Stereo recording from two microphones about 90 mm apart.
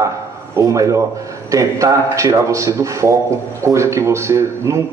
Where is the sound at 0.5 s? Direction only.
35° right (ahead or behind).